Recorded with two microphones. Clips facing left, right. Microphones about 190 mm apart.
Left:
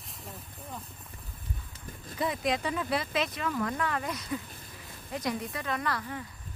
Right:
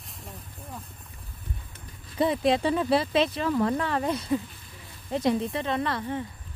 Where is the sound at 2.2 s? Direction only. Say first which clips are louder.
Right 7 dB; 30° right (ahead or behind).